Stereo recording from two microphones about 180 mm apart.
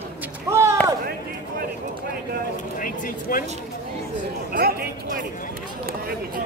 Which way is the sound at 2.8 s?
50° left (ahead or behind).